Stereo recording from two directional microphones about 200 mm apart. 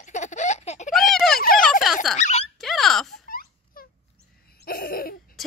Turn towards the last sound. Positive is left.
turn(degrees=45)  # may be behind; listen again after turning